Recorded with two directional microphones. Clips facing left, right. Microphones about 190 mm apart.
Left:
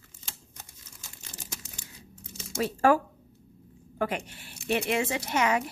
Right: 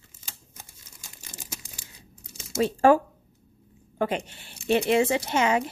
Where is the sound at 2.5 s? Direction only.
25° right (ahead or behind).